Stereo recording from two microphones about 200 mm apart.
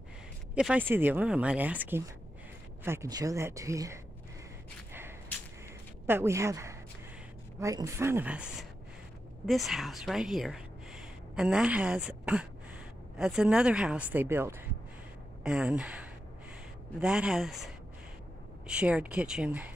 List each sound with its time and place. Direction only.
0.6 s speech: 5° right (ahead or behind)
6.0 s a woman's voice: 10° right (ahead or behind)